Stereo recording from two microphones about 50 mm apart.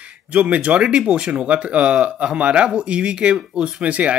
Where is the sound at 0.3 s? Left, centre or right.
Right.